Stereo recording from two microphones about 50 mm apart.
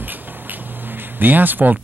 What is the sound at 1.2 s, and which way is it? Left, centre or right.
Speech, right.